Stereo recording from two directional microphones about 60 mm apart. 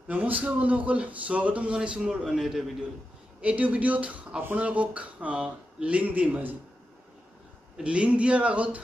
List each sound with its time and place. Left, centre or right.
0.1 s a man's voice: right; by 2.6 s centre
3.3 s speech: right
7.7 s speech: centre